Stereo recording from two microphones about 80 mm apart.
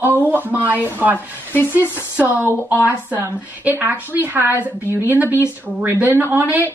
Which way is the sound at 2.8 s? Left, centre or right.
Right.